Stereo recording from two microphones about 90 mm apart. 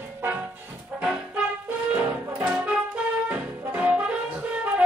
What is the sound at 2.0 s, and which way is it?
Music, 20° right (ahead or behind).